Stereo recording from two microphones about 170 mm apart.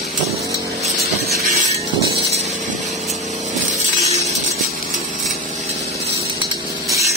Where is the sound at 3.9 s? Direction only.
40° right (ahead or behind).